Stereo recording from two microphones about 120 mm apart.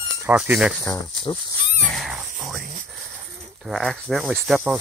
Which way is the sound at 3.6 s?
Centre (ahead or behind).